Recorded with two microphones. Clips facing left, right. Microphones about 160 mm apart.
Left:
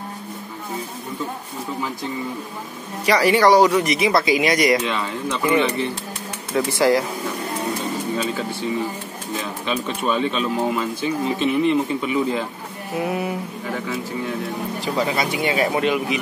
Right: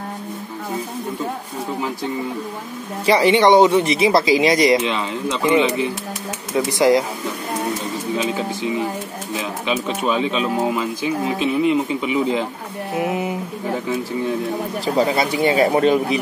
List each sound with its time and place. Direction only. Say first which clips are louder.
3.1 s speech: right 2 dB; 25° right (ahead or behind)
9.4 s speech: right 3 dB; 10° right (ahead or behind)
15.0 s a man's voice: right 5 dB; 35° right (ahead or behind)